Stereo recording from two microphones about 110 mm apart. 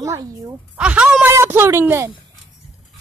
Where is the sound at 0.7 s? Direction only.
10° right (ahead or behind).